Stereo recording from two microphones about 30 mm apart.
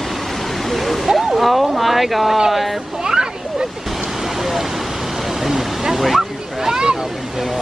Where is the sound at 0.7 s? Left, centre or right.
Centre.